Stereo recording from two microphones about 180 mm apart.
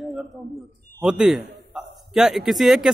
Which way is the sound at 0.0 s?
Centre (ahead or behind).